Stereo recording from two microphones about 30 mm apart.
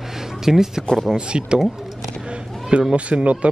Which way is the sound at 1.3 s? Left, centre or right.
Right.